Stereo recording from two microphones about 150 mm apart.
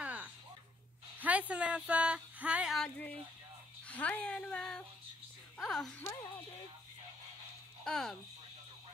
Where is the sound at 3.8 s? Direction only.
10° left (ahead or behind).